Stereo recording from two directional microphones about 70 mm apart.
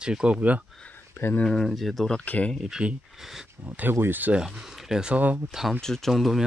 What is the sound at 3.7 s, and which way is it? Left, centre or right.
Speech, right.